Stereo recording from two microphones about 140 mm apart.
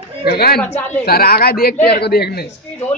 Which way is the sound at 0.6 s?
10° left (ahead or behind).